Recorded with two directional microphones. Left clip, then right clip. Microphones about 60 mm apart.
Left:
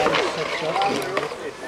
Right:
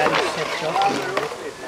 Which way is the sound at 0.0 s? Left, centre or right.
Centre.